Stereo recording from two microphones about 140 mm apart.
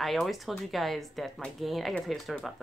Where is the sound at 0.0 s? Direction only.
Centre (ahead or behind).